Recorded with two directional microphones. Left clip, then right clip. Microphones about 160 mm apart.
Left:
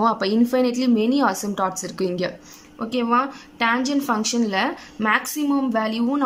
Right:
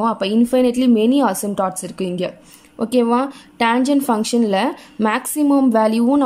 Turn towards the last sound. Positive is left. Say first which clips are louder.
# right 7 dB
turn(degrees=-25)  # may be behind; listen again after turning